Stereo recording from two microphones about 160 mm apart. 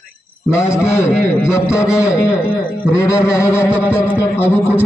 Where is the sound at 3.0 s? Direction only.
15° left (ahead or behind).